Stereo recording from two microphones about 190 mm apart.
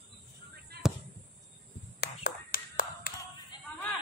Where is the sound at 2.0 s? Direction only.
55° left (ahead or behind).